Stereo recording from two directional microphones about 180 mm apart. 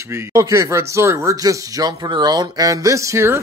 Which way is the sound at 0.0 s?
15° right (ahead or behind).